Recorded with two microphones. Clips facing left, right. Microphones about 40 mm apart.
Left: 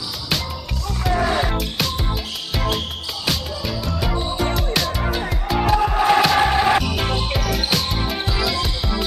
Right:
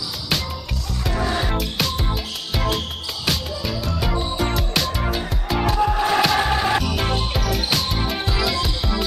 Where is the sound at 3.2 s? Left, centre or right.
Centre.